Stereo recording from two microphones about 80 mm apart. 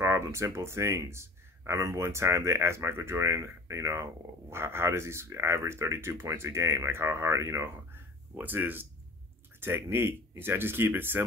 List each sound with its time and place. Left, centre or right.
0.0 s speech: right
8.4 s speech: right